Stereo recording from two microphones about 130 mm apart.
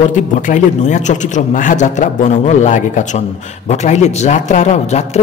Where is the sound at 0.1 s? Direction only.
70° left (ahead or behind).